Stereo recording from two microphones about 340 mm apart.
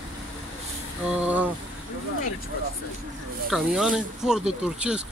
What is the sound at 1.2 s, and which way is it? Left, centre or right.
Speech, centre.